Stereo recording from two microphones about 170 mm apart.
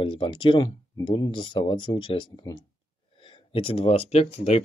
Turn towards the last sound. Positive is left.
turn(degrees=35)  # may be behind; listen again after turning